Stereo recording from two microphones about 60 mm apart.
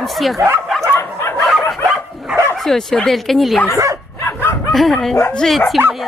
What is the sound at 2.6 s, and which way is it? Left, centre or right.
Speech, centre.